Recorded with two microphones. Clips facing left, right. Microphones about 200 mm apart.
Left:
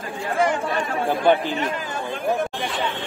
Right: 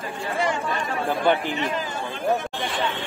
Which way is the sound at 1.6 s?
50° left (ahead or behind).